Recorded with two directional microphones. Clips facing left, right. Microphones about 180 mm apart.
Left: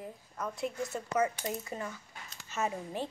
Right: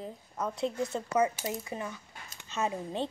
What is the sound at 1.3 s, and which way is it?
Speech, 10° right (ahead or behind).